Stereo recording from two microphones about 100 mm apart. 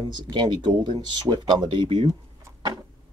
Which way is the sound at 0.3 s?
50° right (ahead or behind).